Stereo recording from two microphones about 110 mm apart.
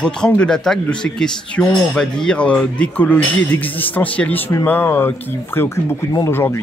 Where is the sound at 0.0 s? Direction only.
10° left (ahead or behind).